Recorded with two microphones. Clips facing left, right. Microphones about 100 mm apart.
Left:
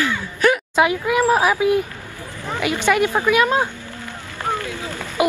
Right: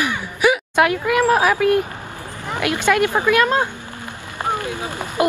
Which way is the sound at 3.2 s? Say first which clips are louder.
Even; 10° left (ahead or behind).